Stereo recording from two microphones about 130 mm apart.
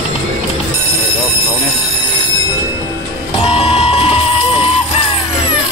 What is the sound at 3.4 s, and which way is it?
Printer, 45° left (ahead or behind).